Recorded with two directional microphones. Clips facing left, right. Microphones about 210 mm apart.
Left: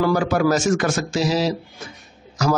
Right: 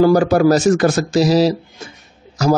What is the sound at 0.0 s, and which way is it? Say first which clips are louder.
Speech: right 7 dB; 40° right (ahead or behind).